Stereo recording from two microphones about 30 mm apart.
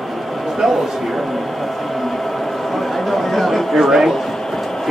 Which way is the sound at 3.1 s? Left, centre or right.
Centre.